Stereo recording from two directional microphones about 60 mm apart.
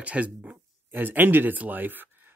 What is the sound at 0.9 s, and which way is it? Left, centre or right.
Speech, right.